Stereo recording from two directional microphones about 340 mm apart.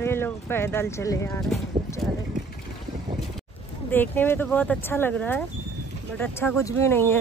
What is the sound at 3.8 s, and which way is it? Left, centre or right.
Speech, centre.